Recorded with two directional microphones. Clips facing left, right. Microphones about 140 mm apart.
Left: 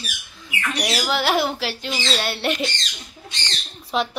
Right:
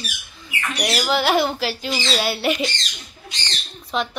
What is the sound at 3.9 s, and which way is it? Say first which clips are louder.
Speech: left 1 dB; 5° left (ahead or behind).